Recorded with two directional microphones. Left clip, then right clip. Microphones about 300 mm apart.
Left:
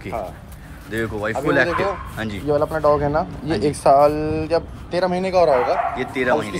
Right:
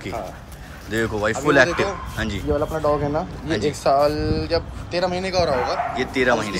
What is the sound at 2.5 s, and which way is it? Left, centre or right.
Speech, left.